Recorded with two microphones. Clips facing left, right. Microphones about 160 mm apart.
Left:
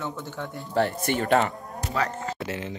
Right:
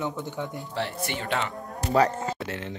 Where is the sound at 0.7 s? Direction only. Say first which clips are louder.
Left 8 dB; 45° left (ahead or behind).